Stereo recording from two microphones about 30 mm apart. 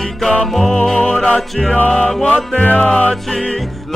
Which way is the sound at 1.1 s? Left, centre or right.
Left.